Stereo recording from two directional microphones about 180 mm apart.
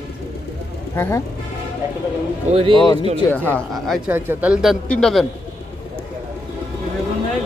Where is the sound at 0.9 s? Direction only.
15° left (ahead or behind).